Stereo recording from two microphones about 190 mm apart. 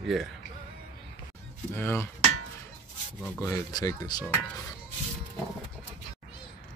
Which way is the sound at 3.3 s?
15° left (ahead or behind).